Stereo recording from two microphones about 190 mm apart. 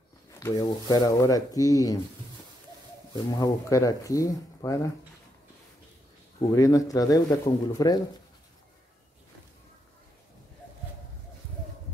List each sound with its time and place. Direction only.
0.3 s speech: 15° left (ahead or behind)
3.3 s speech: 20° left (ahead or behind)
6.5 s speech: 15° left (ahead or behind)